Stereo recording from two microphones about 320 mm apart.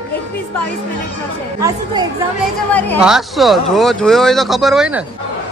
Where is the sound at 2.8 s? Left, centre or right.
Centre.